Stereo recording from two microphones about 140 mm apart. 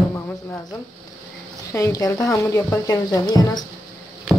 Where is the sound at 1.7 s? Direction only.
25° left (ahead or behind).